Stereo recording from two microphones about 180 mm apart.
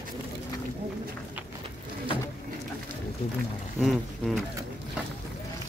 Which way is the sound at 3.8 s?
Centre (ahead or behind).